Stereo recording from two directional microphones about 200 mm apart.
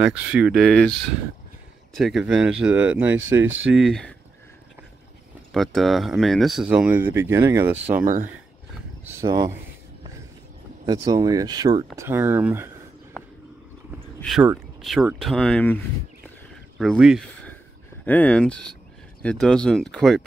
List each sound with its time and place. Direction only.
0.0 s speech: 5° right (ahead or behind)
2.0 s speech: centre (ahead or behind)
3.7 s speech: centre (ahead or behind)
5.5 s speech: centre (ahead or behind)
8.0 s speech: 45° right (ahead or behind)
9.0 s speech: 20° right (ahead or behind)
10.9 s speech: 20° right (ahead or behind)
13.2 s a sound: 5° left (ahead or behind)
14.2 s speech: centre (ahead or behind)
18.0 s speech: 10° left (ahead or behind)